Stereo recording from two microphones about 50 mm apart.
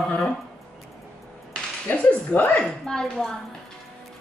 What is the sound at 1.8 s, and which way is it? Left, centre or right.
Speech, left.